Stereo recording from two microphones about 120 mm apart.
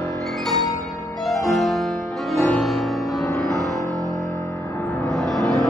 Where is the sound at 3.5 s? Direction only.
30° right (ahead or behind).